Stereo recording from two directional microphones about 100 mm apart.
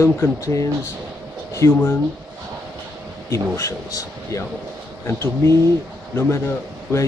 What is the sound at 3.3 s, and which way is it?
Speech, 30° left (ahead or behind).